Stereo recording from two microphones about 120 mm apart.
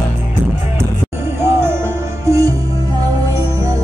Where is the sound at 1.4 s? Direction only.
20° right (ahead or behind).